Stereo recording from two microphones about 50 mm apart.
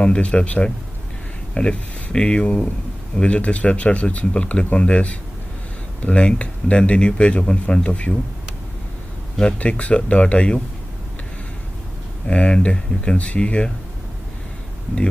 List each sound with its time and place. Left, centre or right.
0.0 s speech: left
9.6 s speech: left
12.3 s speech: left